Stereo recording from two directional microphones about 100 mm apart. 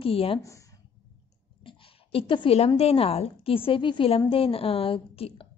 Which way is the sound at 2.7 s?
85° left.